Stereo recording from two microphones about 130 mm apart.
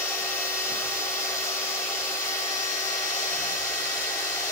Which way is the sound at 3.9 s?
20° left (ahead or behind).